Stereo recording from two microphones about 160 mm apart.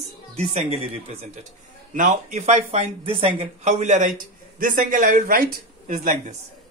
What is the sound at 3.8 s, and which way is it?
Speech, 50° right (ahead or behind).